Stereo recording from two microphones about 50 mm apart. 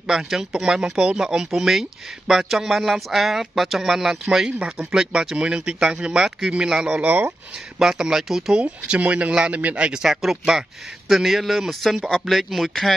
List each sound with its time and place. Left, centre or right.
0.0 s speech: centre
4.5 s speech: centre
5.4 s speech: right
7.0 s speech: right
7.8 s speech: centre
8.5 s speech: right
10.0 s speech: centre